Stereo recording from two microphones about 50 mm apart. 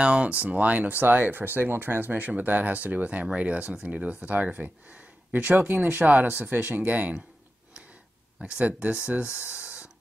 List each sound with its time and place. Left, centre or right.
0.0 s speech: right
8.4 s speech: right
9.5 s a sound: right